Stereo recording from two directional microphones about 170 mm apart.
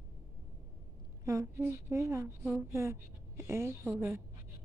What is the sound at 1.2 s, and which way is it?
A woman's voice, 20° right (ahead or behind).